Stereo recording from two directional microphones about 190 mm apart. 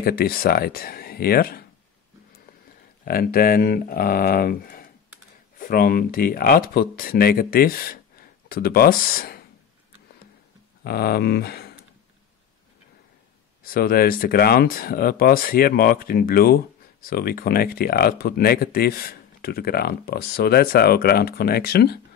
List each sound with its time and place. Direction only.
0.0 s speech: 50° left (ahead or behind)
3.1 s speech: 50° left (ahead or behind)
10.8 s speech: 55° left (ahead or behind)
13.7 s speech: 50° left (ahead or behind)